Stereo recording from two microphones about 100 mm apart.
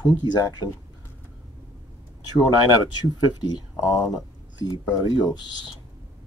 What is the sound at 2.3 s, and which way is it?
Speech, 45° left (ahead or behind).